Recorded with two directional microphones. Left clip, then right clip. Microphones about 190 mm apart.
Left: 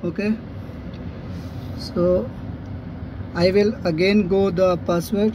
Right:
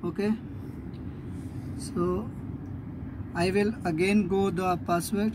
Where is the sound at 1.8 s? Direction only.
15° right (ahead or behind).